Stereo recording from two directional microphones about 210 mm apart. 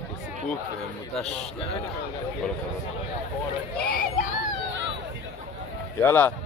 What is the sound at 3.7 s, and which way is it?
Speech, 45° left (ahead or behind).